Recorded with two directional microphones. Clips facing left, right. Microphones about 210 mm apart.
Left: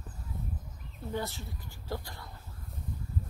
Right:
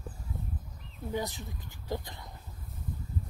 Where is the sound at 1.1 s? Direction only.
15° right (ahead or behind).